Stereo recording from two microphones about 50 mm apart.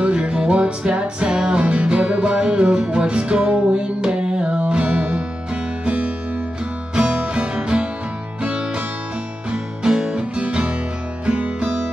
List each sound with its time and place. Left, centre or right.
0.0 s music: centre